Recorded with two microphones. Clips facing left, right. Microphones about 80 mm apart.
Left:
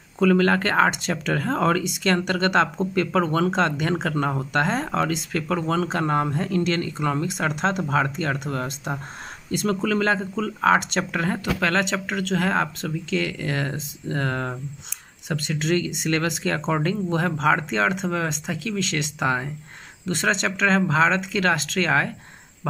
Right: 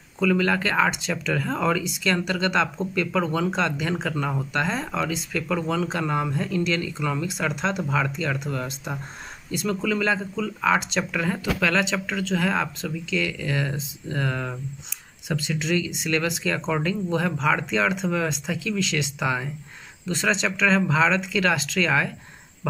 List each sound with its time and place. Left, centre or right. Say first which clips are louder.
0.2 s speech: left 3 dB; left